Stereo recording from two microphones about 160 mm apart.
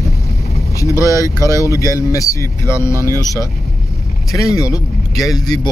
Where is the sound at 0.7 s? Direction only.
20° left (ahead or behind).